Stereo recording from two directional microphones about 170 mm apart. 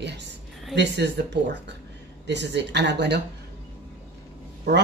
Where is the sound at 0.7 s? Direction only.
80° right.